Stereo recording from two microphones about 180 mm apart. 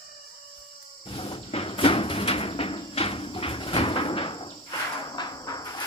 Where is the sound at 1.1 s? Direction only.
30° left (ahead or behind).